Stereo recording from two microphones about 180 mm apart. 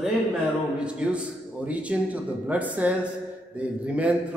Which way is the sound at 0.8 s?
5° right (ahead or behind).